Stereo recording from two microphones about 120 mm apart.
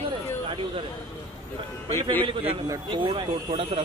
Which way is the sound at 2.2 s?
50° right (ahead or behind).